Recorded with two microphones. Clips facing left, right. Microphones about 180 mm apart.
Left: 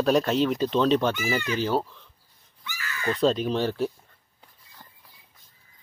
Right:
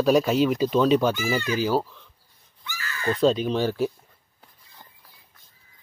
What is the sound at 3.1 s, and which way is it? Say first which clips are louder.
Speech: right 2 dB; centre (ahead or behind).